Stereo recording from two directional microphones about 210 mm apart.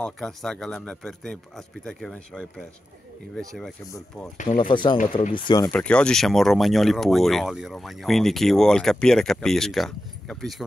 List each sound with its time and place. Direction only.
0.0 s speech: centre (ahead or behind)
4.4 s speech: 25° left (ahead or behind)
5.7 s speech: 5° left (ahead or behind)